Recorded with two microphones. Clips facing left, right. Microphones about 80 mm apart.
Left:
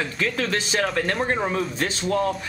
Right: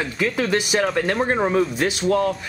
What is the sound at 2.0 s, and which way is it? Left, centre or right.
Speech, centre.